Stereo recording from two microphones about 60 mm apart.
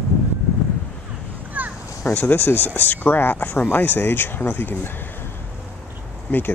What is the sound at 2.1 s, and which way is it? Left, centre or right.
Speech, left.